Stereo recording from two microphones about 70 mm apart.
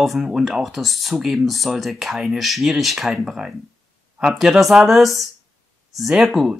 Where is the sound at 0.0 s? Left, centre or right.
Centre.